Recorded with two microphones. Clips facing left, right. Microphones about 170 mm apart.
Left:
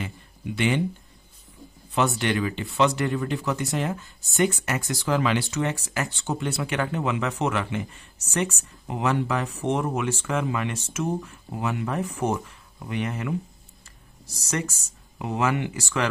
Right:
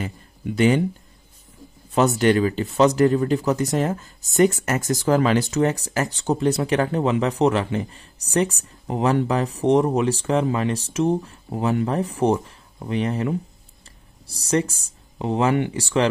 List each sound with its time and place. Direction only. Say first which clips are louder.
0.0 s speech: right 4 dB; 40° right (ahead or behind)
2.0 s speech: right 6 dB; 40° right (ahead or behind)